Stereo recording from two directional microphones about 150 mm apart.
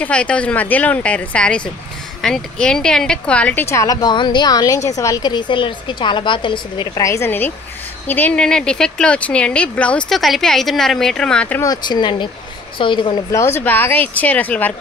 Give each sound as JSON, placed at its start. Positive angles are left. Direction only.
{"t": 0.0, "sound": "a woman's voice", "side_deg": 10}
{"t": 7.0, "sound": "a woman's voice", "side_deg": 20}
{"t": 11.6, "sound": "speech", "side_deg": 25}
{"t": 13.3, "sound": "a woman's voice", "side_deg": 15}